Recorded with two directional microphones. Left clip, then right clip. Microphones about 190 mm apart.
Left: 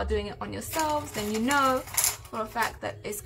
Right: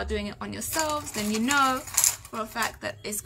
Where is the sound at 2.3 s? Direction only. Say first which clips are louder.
Left 1 dB; centre (ahead or behind).